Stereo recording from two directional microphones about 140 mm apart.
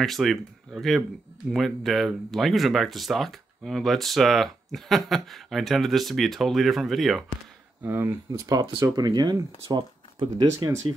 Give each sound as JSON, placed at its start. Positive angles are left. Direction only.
{"t": 0.0, "sound": "speech", "side_deg": 0}
{"t": 7.8, "sound": "speech", "side_deg": -20}